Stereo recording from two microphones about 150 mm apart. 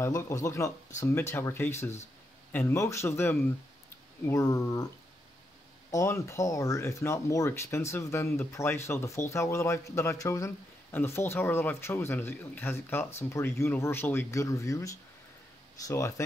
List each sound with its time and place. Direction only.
0.0 s speech: 20° left (ahead or behind)
5.9 s speech: 20° left (ahead or behind)